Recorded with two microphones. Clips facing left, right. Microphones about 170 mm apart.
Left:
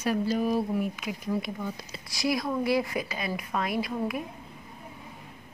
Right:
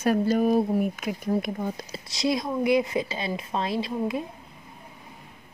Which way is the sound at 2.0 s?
25° right (ahead or behind).